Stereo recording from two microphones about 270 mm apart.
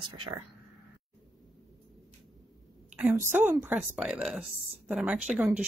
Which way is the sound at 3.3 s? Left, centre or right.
Centre.